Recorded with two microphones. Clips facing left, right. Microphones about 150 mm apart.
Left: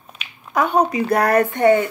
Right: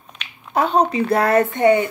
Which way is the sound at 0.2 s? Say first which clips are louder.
Right 1 dB; 5° left (ahead or behind).